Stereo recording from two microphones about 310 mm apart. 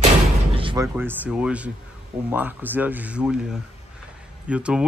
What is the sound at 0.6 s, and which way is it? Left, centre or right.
Music, centre.